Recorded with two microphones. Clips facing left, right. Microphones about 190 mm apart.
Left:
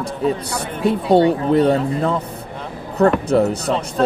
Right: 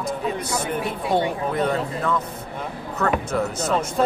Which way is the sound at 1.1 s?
35° left (ahead or behind).